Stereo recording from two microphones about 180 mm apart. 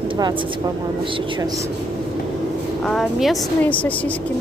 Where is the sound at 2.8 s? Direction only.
Centre (ahead or behind).